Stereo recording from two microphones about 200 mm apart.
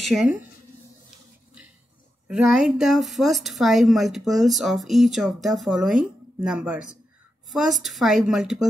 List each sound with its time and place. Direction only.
0.0 s speech: centre (ahead or behind)
2.2 s a woman's voice: 5° right (ahead or behind)